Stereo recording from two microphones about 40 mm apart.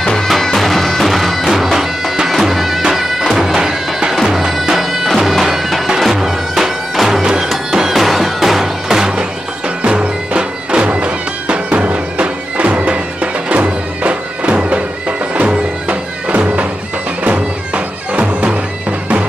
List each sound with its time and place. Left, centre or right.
0.0 s music: centre
0.4 s bagpipes: centre
3.3 s music: centre; by 19.2 s right